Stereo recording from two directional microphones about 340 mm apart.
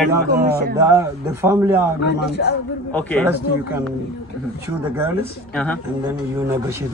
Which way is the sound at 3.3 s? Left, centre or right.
Centre.